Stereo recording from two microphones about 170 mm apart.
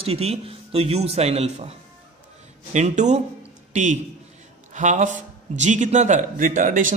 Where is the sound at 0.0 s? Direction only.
35° right (ahead or behind).